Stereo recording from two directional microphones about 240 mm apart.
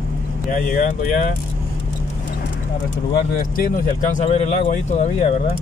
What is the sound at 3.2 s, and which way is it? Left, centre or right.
Speech, left.